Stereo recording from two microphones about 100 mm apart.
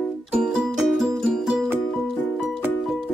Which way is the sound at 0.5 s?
Centre (ahead or behind).